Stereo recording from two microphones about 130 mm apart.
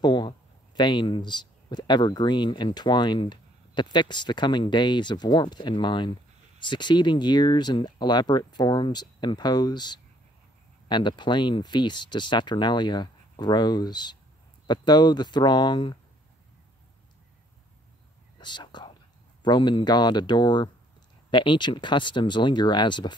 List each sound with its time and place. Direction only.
0.0 s speech: 35° left (ahead or behind)
18.4 s whispering: 35° left (ahead or behind)
19.4 s speech: 35° left (ahead or behind)